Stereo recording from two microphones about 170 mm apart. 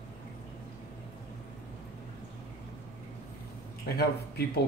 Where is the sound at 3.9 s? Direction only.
70° left (ahead or behind).